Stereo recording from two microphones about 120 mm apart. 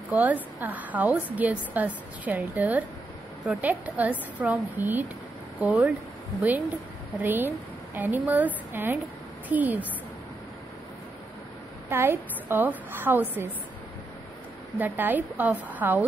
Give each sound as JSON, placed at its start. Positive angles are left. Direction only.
{"t": 0.1, "sound": "a woman's voice", "side_deg": -15}
{"t": 7.2, "sound": "a woman's voice", "side_deg": -15}
{"t": 11.9, "sound": "a woman's voice", "side_deg": -20}
{"t": 14.8, "sound": "a woman's voice", "side_deg": -15}